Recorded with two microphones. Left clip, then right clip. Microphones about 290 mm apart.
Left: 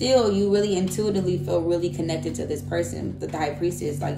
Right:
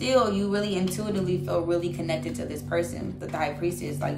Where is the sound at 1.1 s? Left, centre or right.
Centre.